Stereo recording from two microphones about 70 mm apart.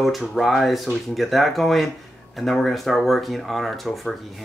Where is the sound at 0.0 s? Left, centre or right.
Centre.